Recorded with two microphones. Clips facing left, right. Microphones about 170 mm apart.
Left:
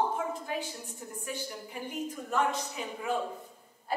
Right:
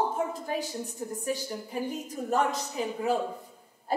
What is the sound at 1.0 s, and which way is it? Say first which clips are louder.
A woman's voice: right 6 dB; 35° right (ahead or behind).